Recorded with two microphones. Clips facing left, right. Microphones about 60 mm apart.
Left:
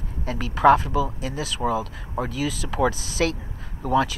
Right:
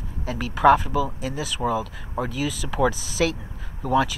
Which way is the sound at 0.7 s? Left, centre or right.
Right.